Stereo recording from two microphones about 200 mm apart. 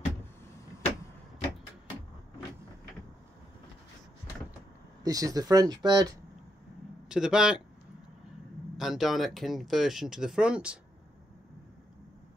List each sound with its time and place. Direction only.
5.0 s speech: 20° right (ahead or behind)
7.1 s speech: 5° right (ahead or behind)
8.7 s speech: centre (ahead or behind)